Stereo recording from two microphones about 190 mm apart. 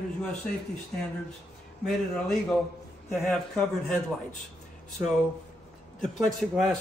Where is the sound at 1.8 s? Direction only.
Centre (ahead or behind).